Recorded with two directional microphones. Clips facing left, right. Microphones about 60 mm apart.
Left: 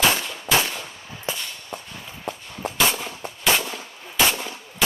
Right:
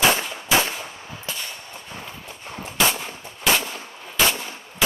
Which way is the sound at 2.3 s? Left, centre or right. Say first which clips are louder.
Left 4 dB; left.